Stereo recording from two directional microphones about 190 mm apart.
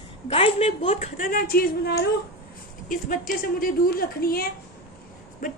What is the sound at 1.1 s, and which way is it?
Speech, 45° left (ahead or behind).